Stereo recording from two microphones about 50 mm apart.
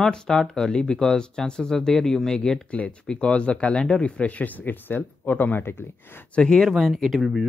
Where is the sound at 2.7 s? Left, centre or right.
Left.